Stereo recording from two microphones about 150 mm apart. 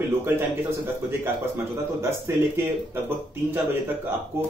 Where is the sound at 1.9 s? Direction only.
15° right (ahead or behind).